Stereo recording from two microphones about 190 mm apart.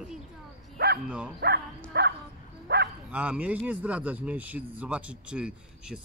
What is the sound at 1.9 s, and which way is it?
Speech, 60° right (ahead or behind).